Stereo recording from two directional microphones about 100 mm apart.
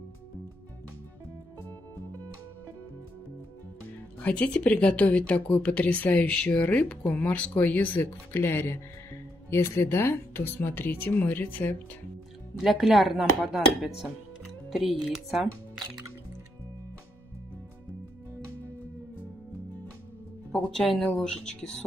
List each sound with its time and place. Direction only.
3.8 s speech: 15° left (ahead or behind)
12.5 s speech: 5° right (ahead or behind)
20.7 s speech: 5° left (ahead or behind)